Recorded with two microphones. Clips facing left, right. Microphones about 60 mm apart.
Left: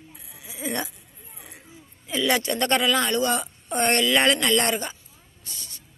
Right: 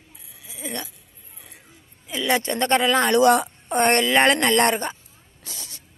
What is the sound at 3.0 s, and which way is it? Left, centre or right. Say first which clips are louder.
Speech: right 7 dB; right.